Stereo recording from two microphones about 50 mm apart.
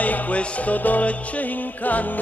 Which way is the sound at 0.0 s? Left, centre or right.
Left.